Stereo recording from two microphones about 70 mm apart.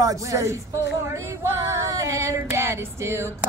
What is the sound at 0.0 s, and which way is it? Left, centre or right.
Female singing, right.